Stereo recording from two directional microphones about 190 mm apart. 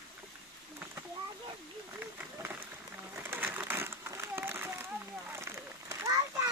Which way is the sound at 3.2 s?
10° right (ahead or behind).